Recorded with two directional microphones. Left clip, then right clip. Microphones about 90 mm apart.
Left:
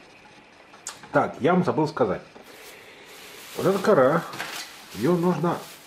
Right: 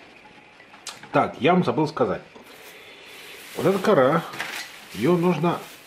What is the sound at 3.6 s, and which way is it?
Speech, 20° right (ahead or behind).